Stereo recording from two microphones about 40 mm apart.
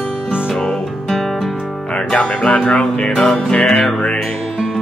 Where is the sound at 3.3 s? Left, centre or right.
Centre.